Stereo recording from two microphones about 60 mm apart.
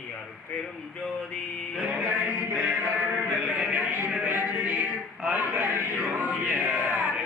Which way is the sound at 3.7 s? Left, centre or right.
Right.